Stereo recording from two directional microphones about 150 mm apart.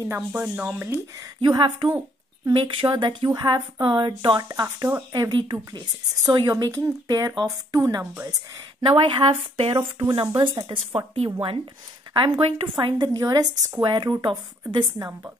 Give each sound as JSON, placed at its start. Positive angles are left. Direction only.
{"t": 0.4, "sound": "speech", "side_deg": -10}
{"t": 1.2, "sound": "speech", "side_deg": -30}
{"t": 1.9, "sound": "a sound", "side_deg": -15}
{"t": 2.6, "sound": "speech", "side_deg": -35}
{"t": 3.3, "sound": "speech", "side_deg": -20}
{"t": 3.8, "sound": "speech", "side_deg": -35}
{"t": 8.8, "sound": "speech", "side_deg": -35}
{"t": 11.0, "sound": "speech", "side_deg": -35}
{"t": 13.0, "sound": "speech", "side_deg": -25}